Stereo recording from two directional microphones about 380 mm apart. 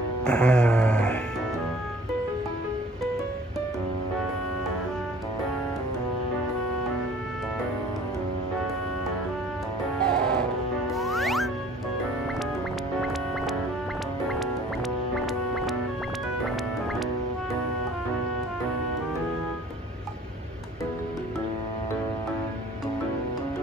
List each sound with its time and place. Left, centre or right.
0.2 s music: centre
10.0 s music: centre
15.1 s music: centre